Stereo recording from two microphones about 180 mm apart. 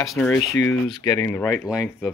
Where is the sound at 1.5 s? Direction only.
5° right (ahead or behind).